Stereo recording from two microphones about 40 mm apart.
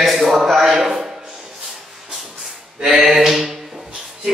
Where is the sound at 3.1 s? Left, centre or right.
Centre.